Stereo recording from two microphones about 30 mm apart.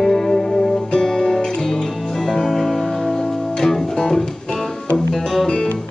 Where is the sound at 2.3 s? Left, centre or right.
Centre.